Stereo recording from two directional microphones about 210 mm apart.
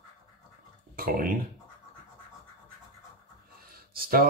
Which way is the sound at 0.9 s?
45° right (ahead or behind).